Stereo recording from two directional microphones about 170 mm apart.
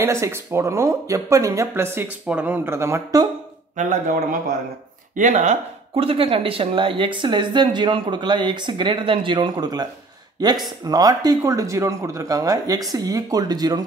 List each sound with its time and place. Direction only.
0.0 s speech: 15° right (ahead or behind)
3.7 s a man's voice: 55° right (ahead or behind); by 13.8 s 25° right (ahead or behind)